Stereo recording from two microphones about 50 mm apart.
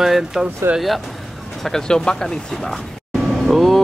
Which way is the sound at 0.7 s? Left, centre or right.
Centre.